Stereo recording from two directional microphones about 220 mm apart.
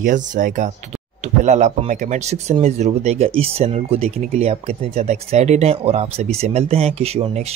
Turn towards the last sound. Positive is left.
turn(degrees=-30)  # may be behind; listen again after turning